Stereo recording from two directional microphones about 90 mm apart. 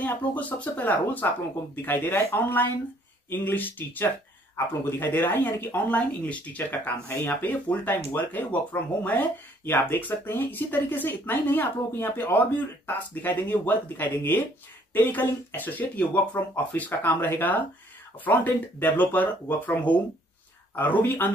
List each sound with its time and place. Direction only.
0.0 s speech: 20° left (ahead or behind)